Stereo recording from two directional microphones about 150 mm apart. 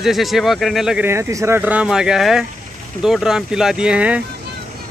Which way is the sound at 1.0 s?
20° right (ahead or behind).